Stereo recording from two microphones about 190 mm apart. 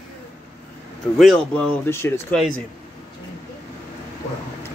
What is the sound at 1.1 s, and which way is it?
Speech, centre (ahead or behind).